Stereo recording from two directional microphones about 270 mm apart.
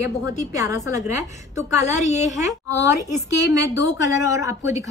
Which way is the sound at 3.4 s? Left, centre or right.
Centre.